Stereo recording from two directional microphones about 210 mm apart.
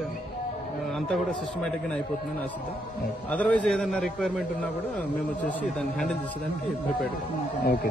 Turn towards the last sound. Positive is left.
turn(degrees=45)  # may be behind; listen again after turning